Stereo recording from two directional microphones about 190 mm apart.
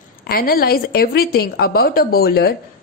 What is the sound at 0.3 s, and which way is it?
A woman's voice, 50° left (ahead or behind).